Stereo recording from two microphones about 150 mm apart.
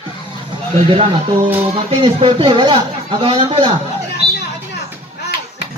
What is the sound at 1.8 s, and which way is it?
A man's voice, 35° right (ahead or behind).